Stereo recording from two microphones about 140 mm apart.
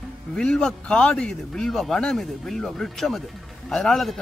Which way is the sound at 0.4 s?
5° left (ahead or behind).